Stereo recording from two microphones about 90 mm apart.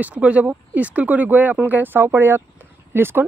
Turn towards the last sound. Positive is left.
turn(degrees=-25)  # may be behind; listen again after turning